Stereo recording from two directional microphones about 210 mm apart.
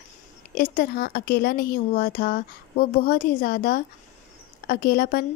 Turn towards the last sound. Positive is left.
turn(degrees=45)  # may be behind; listen again after turning